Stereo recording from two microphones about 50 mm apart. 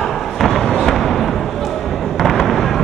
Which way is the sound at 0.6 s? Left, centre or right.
Centre.